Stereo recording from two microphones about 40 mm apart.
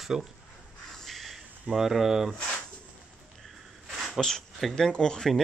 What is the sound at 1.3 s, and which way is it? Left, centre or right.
Speech, centre.